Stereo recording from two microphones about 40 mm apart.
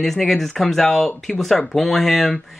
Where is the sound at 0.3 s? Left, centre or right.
Centre.